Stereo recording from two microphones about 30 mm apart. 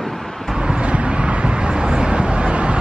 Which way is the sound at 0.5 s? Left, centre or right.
Right.